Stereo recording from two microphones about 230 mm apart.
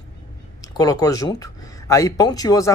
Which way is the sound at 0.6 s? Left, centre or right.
Centre.